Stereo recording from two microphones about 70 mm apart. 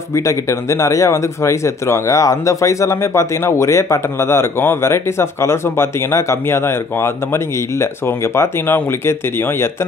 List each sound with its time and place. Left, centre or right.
0.1 s speech: left